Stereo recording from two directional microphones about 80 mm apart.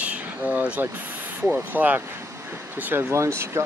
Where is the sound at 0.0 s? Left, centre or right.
Centre.